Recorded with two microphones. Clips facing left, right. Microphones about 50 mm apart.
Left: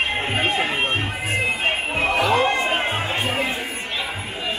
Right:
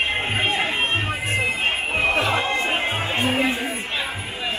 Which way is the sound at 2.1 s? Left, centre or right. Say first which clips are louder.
Left 4 dB; right.